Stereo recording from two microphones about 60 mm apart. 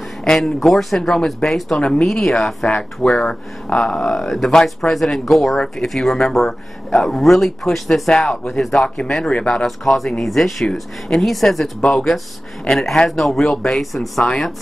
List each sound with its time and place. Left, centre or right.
0.2 s speech: centre
2.0 s speech: centre
9.7 s speech: centre